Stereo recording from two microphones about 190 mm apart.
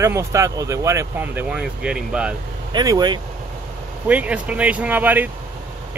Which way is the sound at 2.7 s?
20° right (ahead or behind).